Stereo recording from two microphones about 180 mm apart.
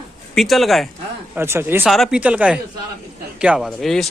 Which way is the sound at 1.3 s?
15° right (ahead or behind).